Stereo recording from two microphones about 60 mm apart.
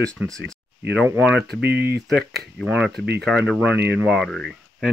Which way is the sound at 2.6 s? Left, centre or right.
Centre.